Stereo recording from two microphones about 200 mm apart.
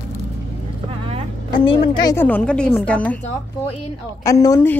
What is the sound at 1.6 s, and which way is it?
Speech, 25° left (ahead or behind).